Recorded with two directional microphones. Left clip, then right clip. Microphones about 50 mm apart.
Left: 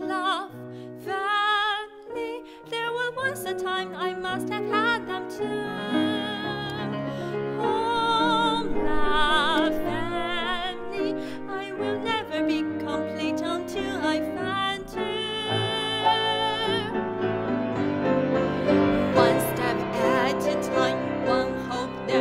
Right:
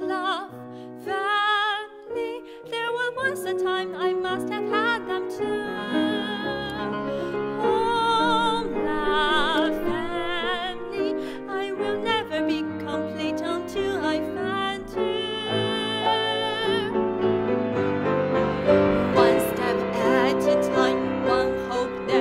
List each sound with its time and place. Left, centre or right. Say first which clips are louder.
0.1 s music: left 1 dB; left
1.1 s music: right 1 dB; left
2.8 s music: right 2 dB; left
3.4 s music: right 3 dB; left
7.6 s music: right 2 dB; left
8.8 s music: right 1 dB; left
12.4 s music: even; left
14.1 s music: right 1 dB; left
16.9 s music: right 4 dB; centre
19.5 s music: right 2 dB; left
21.0 s music: right 2 dB; centre
21.3 s music: right 3 dB; left